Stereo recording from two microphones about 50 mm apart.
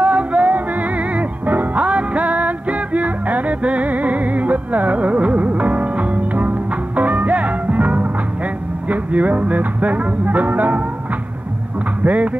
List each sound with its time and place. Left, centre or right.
0.0 s music: right
12.0 s speech: right